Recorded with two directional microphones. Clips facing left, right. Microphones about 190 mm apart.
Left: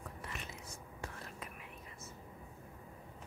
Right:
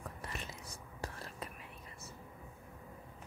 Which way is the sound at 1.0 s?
35° right (ahead or behind).